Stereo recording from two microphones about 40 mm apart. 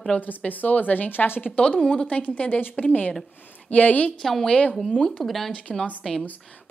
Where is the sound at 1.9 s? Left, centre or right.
Left.